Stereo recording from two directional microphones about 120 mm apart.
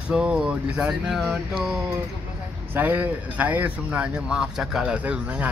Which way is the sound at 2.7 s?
15° right (ahead or behind).